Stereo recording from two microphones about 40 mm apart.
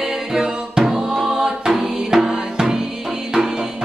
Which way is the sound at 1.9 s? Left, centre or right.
Centre.